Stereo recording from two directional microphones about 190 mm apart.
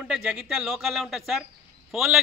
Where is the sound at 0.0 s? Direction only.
5° right (ahead or behind).